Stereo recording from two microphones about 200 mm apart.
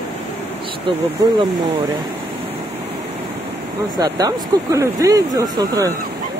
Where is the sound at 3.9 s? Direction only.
20° right (ahead or behind).